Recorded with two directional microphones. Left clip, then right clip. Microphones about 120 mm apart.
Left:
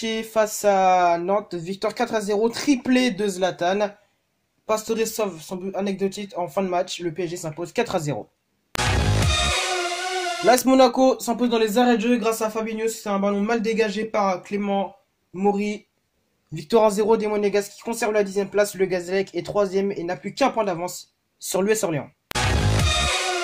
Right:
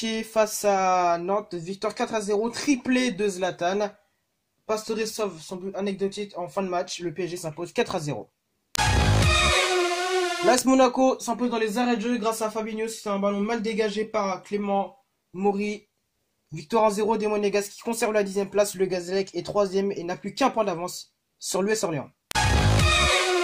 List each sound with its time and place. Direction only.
0.0 s speech: 20° right (ahead or behind); by 7.0 s 5° right (ahead or behind)
7.0 s speech: 20° right (ahead or behind)
8.7 s speech: centre (ahead or behind)
15.3 s speech: 10° right (ahead or behind)
16.5 s speech: 15° left (ahead or behind); by 17.3 s centre (ahead or behind)
17.3 s speech: 20° right (ahead or behind)
18.9 s speech: 5° right (ahead or behind); by 21.0 s 20° right (ahead or behind)
21.5 s speech: 5° right (ahead or behind)
22.3 s music: centre (ahead or behind)